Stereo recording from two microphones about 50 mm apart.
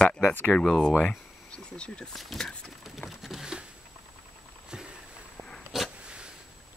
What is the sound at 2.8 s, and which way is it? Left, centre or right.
Patter, centre.